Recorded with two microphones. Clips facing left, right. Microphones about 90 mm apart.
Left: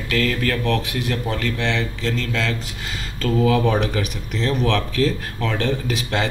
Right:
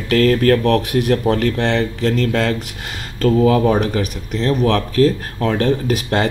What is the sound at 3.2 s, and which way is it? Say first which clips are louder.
Speech: right 5 dB; 35° right (ahead or behind).